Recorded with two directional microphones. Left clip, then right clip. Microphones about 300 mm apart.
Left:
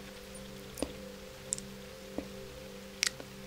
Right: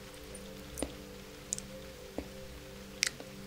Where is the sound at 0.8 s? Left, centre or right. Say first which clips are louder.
Left 2 dB; left.